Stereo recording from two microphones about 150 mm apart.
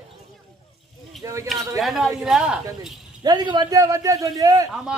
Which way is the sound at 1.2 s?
20° right (ahead or behind).